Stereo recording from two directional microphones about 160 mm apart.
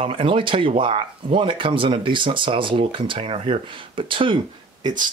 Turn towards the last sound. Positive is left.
turn(degrees=-30)  # may be behind; listen again after turning